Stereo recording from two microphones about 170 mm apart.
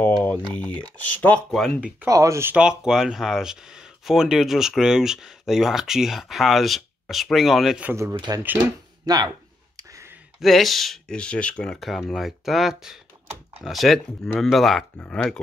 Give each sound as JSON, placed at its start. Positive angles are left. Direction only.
{"t": 0.0, "sound": "typing", "side_deg": 10}
{"t": 0.6, "sound": "speech", "side_deg": 10}
{"t": 2.0, "sound": "speech", "side_deg": -20}
{"t": 7.9, "sound": "speech", "side_deg": -20}
{"t": 9.8, "sound": "a sound", "side_deg": -20}
{"t": 10.4, "sound": "speech", "side_deg": 0}